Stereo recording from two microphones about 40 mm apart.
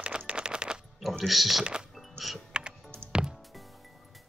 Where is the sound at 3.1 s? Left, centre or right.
Right.